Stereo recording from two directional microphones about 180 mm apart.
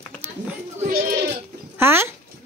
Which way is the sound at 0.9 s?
60° right (ahead or behind).